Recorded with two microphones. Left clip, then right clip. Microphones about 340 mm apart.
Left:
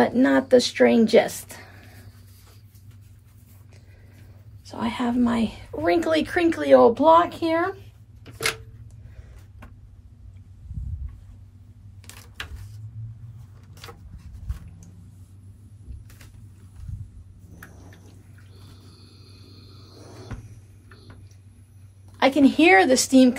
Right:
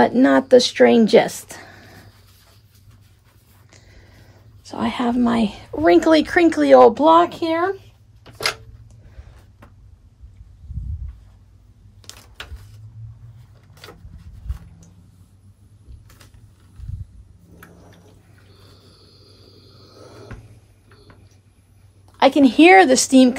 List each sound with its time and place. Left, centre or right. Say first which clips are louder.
0.0 s a woman's voice: right 5 dB; right
4.6 s a woman's voice: right 5 dB; right
8.2 s a sound: right 3 dB; centre
12.0 s mechanisms: right 1 dB; centre
19.5 s a sound: right 2 dB; centre
22.1 s speech: right 5 dB; right